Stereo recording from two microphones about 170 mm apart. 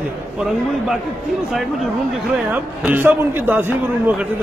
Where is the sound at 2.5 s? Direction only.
10° right (ahead or behind).